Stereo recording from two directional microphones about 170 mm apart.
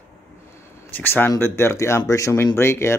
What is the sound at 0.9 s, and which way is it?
Speech, 10° left (ahead or behind).